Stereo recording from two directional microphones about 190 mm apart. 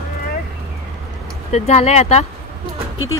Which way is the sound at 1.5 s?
35° left (ahead or behind).